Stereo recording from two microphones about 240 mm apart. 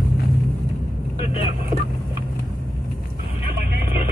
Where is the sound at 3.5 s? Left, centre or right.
Right.